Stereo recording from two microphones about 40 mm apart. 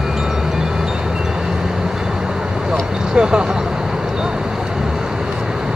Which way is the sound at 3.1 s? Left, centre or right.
Right.